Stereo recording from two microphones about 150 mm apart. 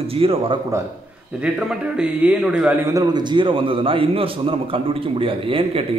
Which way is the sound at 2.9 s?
30° right (ahead or behind).